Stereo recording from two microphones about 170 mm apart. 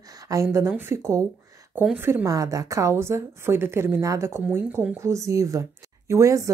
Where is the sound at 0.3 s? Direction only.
20° right (ahead or behind).